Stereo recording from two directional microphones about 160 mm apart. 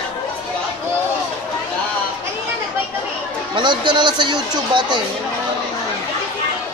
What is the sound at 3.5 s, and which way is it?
Speech, 30° right (ahead or behind).